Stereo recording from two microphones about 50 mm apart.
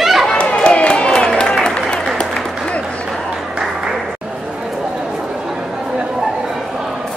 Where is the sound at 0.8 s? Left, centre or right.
Centre.